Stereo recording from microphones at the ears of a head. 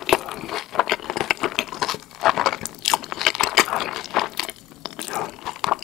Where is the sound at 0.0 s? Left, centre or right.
Left.